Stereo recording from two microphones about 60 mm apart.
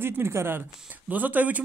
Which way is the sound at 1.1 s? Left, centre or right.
Right.